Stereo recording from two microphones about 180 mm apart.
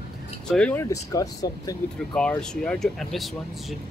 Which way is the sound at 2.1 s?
5° left (ahead or behind).